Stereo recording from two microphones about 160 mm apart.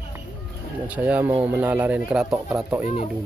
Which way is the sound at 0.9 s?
10° right (ahead or behind).